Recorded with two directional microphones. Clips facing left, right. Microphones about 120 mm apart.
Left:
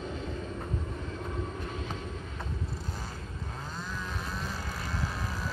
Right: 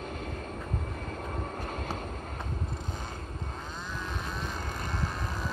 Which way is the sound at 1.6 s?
50° right (ahead or behind).